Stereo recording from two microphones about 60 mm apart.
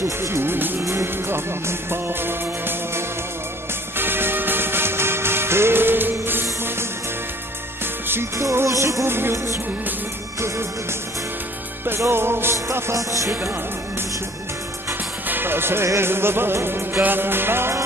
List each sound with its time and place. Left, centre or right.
0.0 s music: right
7.8 s music: right
8.6 s music: right
9.0 s music: right
12.1 s music: right
12.9 s music: right
15.2 s music: right